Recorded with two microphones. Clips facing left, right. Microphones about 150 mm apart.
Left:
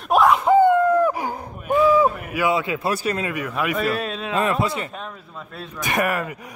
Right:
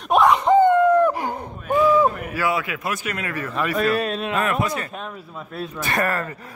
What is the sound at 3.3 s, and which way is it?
Speech, 10° left (ahead or behind).